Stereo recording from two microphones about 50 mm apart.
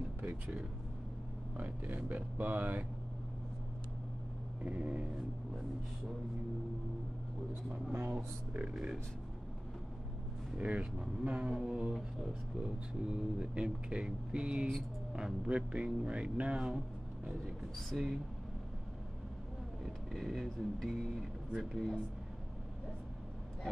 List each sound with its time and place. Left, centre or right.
1.6 s speech: right
4.6 s speech: right
5.0 s speech: centre
8.1 s speech: right
10.6 s speech: right
11.5 s speech: centre
17.7 s speech: centre
19.8 s speech: centre